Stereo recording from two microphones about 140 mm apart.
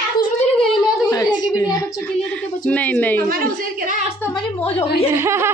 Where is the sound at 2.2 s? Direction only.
10° left (ahead or behind).